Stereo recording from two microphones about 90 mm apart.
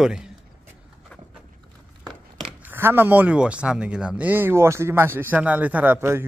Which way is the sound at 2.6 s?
25° right (ahead or behind).